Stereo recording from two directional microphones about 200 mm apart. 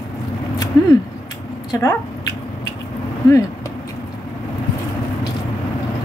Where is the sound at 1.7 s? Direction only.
15° left (ahead or behind).